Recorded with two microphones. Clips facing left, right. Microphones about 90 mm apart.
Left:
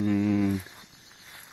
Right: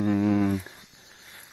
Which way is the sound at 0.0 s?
40° right (ahead or behind).